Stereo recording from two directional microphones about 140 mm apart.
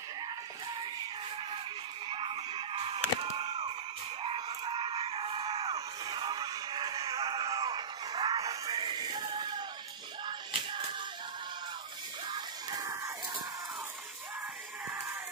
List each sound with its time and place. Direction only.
2.0 s music: 40° right (ahead or behind)
10.2 s a sound: 35° right (ahead or behind)
12.3 s music: 30° right (ahead or behind)